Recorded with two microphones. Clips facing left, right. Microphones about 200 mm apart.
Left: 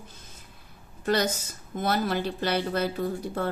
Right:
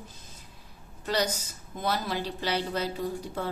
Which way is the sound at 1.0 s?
50° left (ahead or behind).